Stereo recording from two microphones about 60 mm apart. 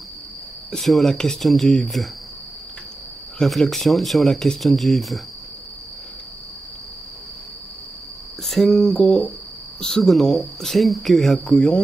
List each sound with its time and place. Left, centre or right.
0.7 s speech: centre
3.3 s speech: centre
8.5 s speech: centre
11.5 s speech: centre